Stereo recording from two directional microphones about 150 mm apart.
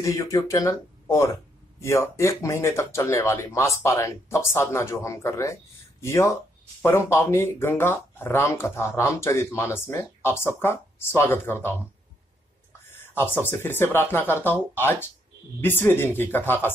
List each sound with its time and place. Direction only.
0.0 s speech: 20° left (ahead or behind)
12.9 s speech: 15° left (ahead or behind)